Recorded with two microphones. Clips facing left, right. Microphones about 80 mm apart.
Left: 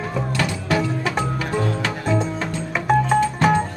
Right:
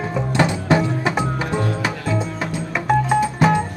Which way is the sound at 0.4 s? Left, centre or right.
Right.